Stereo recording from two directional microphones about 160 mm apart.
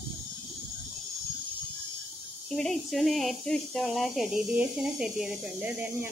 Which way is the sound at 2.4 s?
Centre (ahead or behind).